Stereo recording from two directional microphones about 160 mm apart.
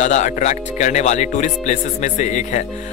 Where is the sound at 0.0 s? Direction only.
45° left (ahead or behind).